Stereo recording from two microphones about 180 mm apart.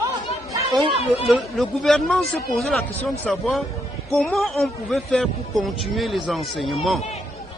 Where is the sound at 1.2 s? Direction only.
Centre (ahead or behind).